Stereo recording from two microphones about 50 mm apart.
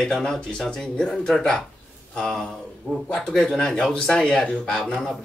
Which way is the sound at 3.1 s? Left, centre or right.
Centre.